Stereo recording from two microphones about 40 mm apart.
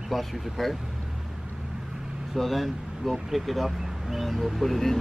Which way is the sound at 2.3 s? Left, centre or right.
Centre.